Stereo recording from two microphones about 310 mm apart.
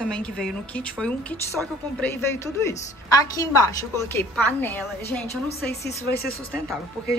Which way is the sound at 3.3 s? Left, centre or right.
Centre.